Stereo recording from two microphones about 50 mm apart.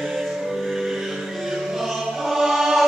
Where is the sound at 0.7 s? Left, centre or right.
Centre.